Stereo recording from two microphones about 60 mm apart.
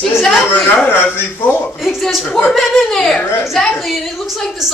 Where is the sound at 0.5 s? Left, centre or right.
Left.